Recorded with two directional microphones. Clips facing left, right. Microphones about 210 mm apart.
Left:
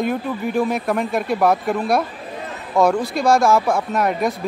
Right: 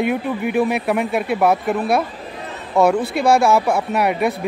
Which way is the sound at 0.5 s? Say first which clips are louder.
Right 1 dB; 5° right (ahead or behind).